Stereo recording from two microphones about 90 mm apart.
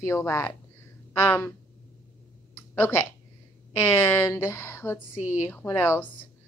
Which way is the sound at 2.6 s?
25° left (ahead or behind).